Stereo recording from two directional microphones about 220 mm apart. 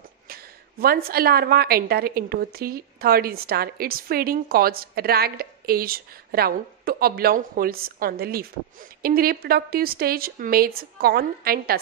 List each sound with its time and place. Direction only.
0.3 s a woman's voice: 40° right (ahead or behind)